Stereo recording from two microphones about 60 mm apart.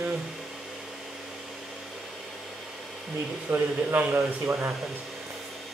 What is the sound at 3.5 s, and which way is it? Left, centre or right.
Speech, right.